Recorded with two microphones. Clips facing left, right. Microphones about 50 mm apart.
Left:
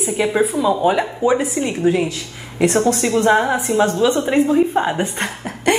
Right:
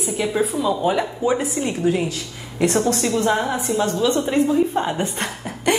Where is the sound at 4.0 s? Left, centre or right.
Left.